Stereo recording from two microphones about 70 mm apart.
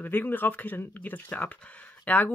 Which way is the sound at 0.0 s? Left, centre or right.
Left.